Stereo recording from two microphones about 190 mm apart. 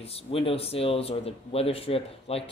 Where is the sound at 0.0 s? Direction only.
30° left (ahead or behind).